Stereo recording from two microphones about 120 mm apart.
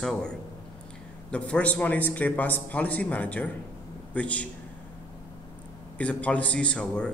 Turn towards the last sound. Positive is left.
turn(degrees=10)  # may be behind; listen again after turning